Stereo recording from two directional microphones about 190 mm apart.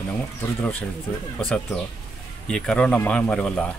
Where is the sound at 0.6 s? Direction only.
10° left (ahead or behind).